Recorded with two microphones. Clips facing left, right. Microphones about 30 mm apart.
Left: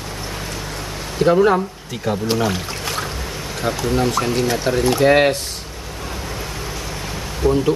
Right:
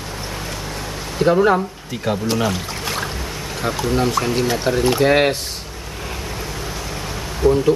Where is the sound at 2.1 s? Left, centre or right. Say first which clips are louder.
Even; right.